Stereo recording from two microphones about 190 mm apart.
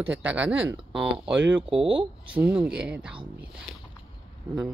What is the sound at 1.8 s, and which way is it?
Speech, 25° right (ahead or behind).